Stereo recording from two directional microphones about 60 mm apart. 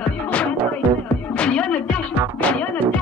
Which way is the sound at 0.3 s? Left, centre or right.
Left.